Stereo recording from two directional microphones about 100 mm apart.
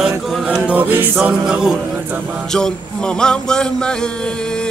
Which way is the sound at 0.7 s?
20° right (ahead or behind).